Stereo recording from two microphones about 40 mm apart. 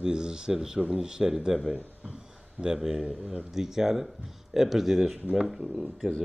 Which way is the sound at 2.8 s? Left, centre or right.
Centre.